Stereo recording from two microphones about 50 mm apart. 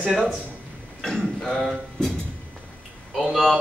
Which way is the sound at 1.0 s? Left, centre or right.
Centre.